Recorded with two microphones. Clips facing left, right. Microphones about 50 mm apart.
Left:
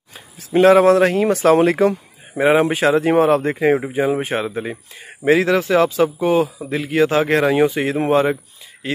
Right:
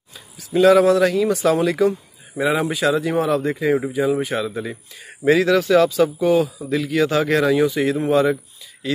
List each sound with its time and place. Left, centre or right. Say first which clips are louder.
0.1 s speech: left 3 dB; left